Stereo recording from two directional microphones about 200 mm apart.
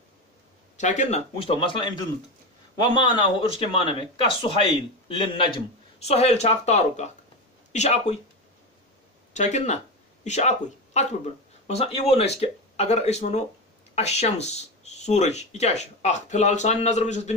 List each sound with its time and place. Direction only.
0.7 s speech: 35° left (ahead or behind)
9.3 s speech: 35° left (ahead or behind)